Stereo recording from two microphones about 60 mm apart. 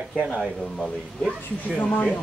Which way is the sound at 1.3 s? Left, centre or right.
Left.